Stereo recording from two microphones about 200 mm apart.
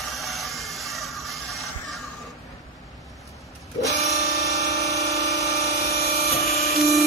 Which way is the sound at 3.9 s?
55° left (ahead or behind).